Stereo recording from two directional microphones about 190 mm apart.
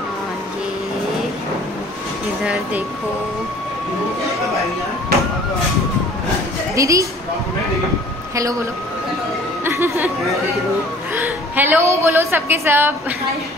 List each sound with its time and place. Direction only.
2.4 s speech: 5° right (ahead or behind)
6.7 s a woman's voice: 15° right (ahead or behind)
9.7 s chatter: 15° right (ahead or behind)
11.1 s a woman's voice: 10° right (ahead or behind)